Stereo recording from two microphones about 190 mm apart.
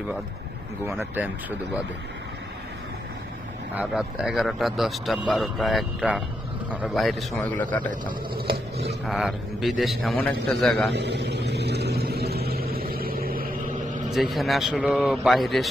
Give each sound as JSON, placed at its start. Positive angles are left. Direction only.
{"t": 0.8, "sound": "speech", "side_deg": -10}
{"t": 3.7, "sound": "a man's voice", "side_deg": -5}
{"t": 9.0, "sound": "a man's voice", "side_deg": 0}
{"t": 10.9, "sound": "vehicle", "side_deg": -65}
{"t": 14.1, "sound": "a man's voice", "side_deg": 0}